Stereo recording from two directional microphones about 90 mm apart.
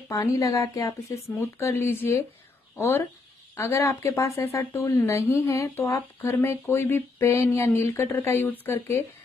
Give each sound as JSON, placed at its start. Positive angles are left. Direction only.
{"t": 0.2, "sound": "a woman's voice", "side_deg": 35}
{"t": 3.5, "sound": "a woman's voice", "side_deg": 30}